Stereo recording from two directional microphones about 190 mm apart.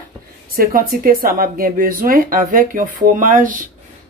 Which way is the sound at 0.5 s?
50° right (ahead or behind).